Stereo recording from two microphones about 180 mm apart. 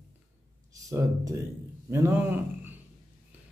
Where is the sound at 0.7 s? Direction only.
20° right (ahead or behind).